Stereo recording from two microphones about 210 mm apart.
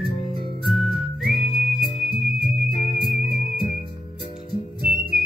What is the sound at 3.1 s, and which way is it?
Music, 35° left (ahead or behind).